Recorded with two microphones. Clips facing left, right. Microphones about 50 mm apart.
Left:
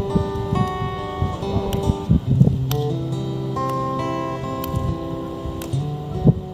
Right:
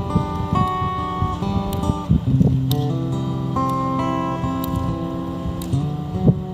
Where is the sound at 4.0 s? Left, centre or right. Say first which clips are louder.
Right 2 dB; right.